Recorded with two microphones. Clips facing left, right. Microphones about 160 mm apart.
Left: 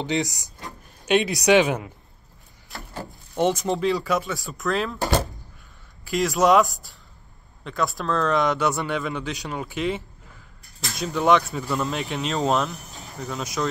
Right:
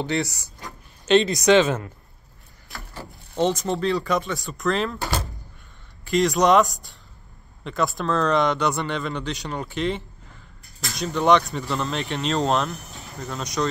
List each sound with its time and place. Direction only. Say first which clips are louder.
0.0 s speech: even; 15° left (ahead or behind)
3.3 s speech: even; 10° left (ahead or behind)
6.0 s speech: right 1 dB; centre (ahead or behind)